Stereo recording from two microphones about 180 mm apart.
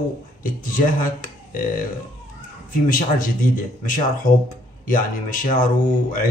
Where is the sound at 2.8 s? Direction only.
50° left (ahead or behind).